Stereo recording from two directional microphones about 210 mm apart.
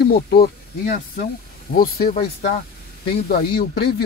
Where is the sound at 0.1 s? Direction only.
45° left (ahead or behind).